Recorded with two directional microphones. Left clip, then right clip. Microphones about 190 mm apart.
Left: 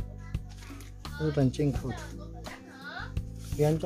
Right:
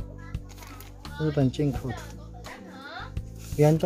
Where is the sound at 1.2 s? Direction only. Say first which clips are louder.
Right 2 dB; 5° right (ahead or behind).